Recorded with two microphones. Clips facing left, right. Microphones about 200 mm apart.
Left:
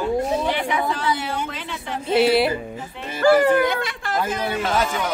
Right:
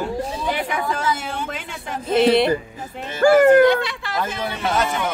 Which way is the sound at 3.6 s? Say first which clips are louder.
Right 6 dB; 50° left (ahead or behind).